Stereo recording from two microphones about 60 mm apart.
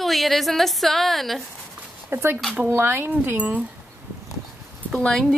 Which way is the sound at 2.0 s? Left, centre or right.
Right.